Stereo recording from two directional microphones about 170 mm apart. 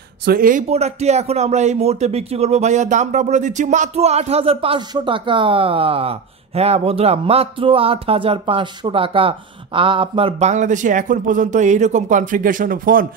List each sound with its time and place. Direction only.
0.2 s speech: 60° right (ahead or behind)
0.7 s speech: 40° right (ahead or behind); by 13.0 s 55° right (ahead or behind)